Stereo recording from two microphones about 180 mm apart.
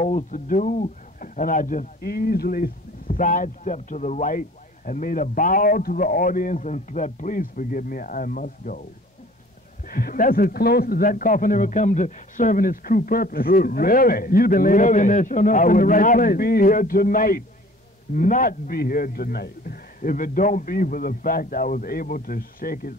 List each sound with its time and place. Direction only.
0.0 s speech: 45° left (ahead or behind)
9.8 s speech: 55° left (ahead or behind)